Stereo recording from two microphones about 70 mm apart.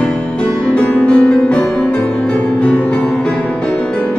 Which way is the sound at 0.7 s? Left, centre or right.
Centre.